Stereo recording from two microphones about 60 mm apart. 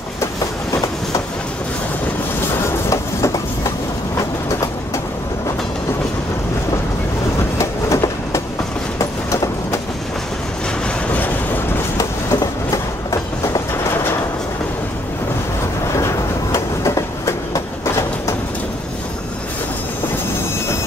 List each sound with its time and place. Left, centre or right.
2.9 s train: left
7.5 s train: left
11.1 s boat: left
12.0 s train: left
16.5 s train: left